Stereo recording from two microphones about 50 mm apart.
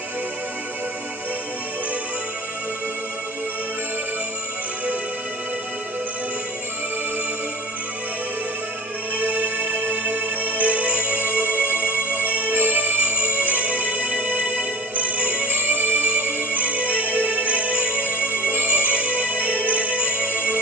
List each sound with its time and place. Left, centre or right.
9.2 s music: right